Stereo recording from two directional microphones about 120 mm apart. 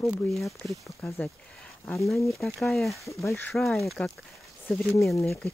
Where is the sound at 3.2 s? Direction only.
15° left (ahead or behind).